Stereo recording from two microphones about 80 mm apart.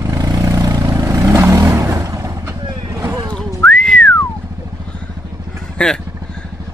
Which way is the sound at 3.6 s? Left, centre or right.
Centre.